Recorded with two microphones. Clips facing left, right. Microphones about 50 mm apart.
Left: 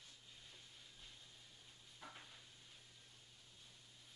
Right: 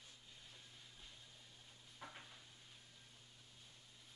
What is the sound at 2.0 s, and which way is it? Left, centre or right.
Stir, centre.